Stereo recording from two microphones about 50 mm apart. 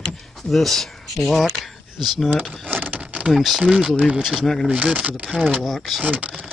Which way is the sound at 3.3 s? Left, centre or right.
Centre.